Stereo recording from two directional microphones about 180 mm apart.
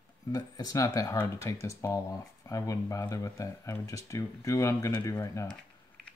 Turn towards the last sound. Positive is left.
turn(degrees=20)  # may be behind; listen again after turning